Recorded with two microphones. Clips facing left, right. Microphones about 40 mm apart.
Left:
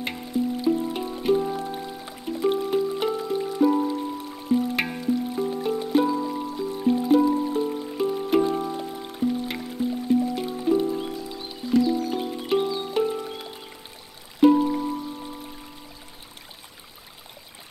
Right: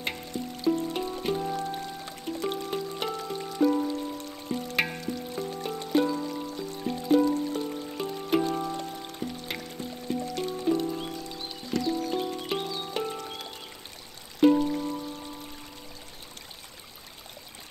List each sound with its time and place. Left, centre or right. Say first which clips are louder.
0.0 s music: left 7 dB; centre
13.2 s music: left 4 dB; centre